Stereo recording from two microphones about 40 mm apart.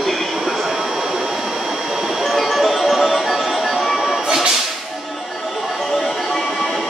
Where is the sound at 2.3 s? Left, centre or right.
Centre.